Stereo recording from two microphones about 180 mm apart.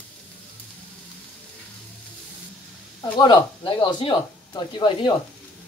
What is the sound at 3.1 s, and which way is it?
Speech, 25° left (ahead or behind).